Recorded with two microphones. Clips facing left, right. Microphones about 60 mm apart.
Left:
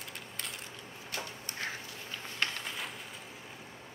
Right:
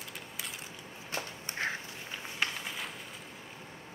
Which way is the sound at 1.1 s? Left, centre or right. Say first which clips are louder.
Right 2 dB; right.